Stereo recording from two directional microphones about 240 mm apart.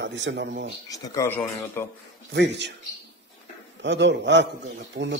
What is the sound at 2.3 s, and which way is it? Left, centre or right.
Speech, right.